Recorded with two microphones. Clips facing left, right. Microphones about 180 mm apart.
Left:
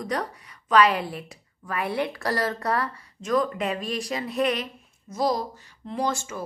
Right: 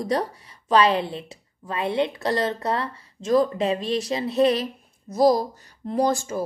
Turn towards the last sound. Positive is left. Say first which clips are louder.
# right 6 dB
turn(degrees=-35)  # may be behind; listen again after turning